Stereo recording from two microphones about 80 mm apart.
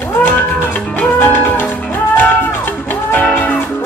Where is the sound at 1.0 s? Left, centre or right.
Left.